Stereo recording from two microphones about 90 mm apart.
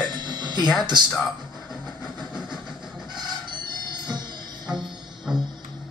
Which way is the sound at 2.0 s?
10° right (ahead or behind).